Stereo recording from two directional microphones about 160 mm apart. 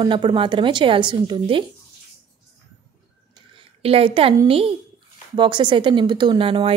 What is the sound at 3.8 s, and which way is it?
A woman's voice, 35° right (ahead or behind).